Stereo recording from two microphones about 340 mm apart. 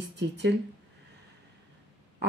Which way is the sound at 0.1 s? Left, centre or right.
Right.